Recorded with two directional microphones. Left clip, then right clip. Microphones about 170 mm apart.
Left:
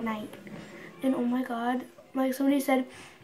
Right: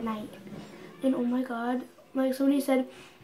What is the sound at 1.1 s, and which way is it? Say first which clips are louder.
Speech: even; 20° left (ahead or behind).